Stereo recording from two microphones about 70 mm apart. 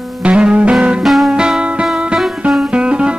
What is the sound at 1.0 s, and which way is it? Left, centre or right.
Music, centre.